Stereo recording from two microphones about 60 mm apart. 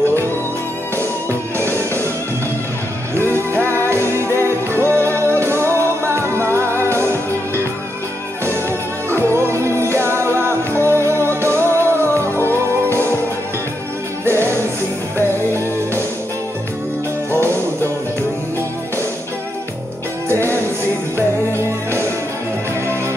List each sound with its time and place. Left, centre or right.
1.6 s music: right
3.3 s music: right
14.2 s music: right
17.3 s music: right
20.2 s music: right
21.5 s music: right